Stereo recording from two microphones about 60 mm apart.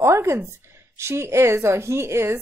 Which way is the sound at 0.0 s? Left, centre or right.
Right.